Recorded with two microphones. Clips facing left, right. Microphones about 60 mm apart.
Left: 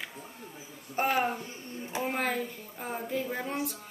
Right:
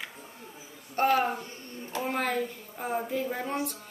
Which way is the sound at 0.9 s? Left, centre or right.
Centre.